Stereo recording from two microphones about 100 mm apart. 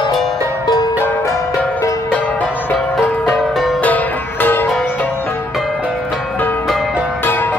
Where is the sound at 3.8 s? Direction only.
20° left (ahead or behind).